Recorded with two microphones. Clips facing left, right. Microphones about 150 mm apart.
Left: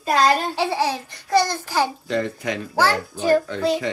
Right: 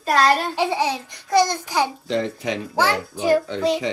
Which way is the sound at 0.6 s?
15° right (ahead or behind).